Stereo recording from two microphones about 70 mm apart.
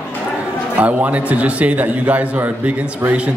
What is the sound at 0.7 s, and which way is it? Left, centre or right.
A man's voice, right.